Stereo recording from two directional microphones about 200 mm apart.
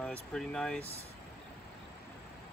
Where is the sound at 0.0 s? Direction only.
5° left (ahead or behind).